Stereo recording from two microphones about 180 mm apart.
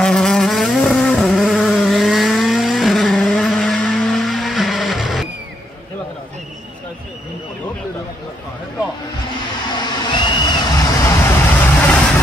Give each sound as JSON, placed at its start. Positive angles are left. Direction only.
{"t": 0.0, "sound": "vehicle", "side_deg": 5}
{"t": 9.7, "sound": "a sound", "side_deg": 25}
{"t": 11.2, "sound": "vehicle", "side_deg": 10}